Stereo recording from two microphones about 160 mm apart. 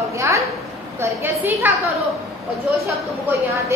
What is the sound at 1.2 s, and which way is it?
Speech, 10° right (ahead or behind).